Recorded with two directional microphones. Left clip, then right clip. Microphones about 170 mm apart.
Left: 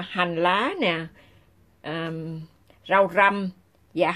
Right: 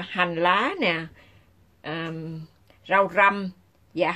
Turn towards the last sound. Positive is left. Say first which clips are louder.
# left 1 dB
turn(degrees=15)  # may be behind; listen again after turning